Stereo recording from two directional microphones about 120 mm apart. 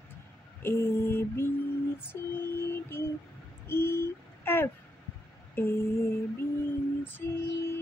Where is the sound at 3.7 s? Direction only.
20° left (ahead or behind).